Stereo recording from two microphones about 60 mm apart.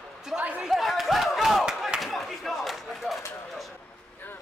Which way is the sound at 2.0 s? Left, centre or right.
Centre.